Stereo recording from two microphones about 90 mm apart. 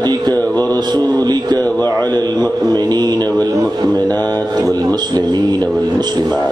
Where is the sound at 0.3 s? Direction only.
20° left (ahead or behind).